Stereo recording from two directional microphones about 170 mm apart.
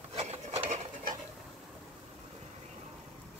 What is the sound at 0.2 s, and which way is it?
Filing, 40° right (ahead or behind).